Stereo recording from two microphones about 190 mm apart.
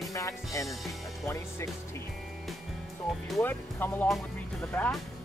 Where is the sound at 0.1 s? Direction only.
15° left (ahead or behind).